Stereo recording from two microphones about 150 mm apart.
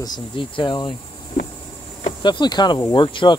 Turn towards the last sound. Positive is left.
turn(degrees=35)  # may be behind; listen again after turning